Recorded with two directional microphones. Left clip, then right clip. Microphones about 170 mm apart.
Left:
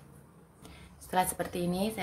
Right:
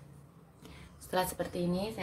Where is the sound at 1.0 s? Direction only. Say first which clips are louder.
Left 3 dB; 10° left (ahead or behind).